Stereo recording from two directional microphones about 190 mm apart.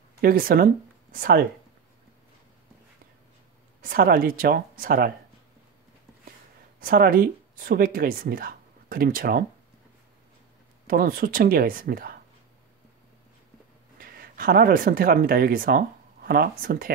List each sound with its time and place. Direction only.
0.2 s speech: 50° right (ahead or behind)
3.8 s speech: 50° right (ahead or behind)
6.8 s speech: 50° right (ahead or behind)
10.9 s speech: 50° right (ahead or behind)
13.9 s speech: 50° right (ahead or behind)